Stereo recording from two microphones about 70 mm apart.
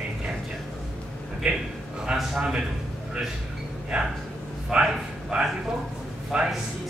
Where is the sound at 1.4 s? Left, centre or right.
Centre.